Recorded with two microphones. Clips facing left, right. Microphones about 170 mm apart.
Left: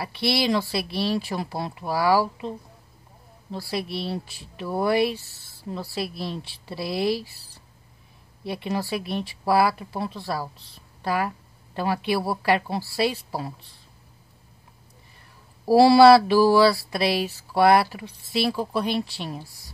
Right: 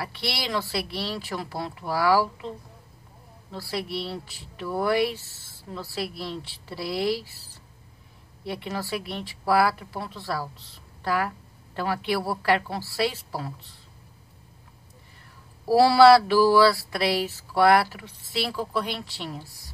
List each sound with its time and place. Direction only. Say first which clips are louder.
0.0 s speech: left 7 dB; 20° left (ahead or behind)
3.5 s speech: left 1 dB; 15° left (ahead or behind)
8.5 s speech: left 3 dB; 15° left (ahead or behind)
15.7 s a sound: left 2 dB; 20° left (ahead or behind)